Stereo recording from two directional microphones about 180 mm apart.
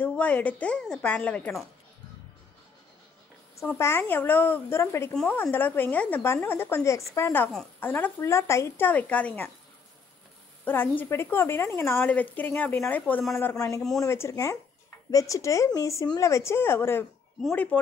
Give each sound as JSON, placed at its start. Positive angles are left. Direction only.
{"t": 0.0, "sound": "speech", "side_deg": 10}
{"t": 3.6, "sound": "speech", "side_deg": 15}
{"t": 10.6, "sound": "speech", "side_deg": 10}